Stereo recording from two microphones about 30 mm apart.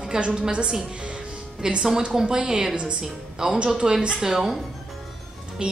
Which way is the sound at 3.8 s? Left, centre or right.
Right.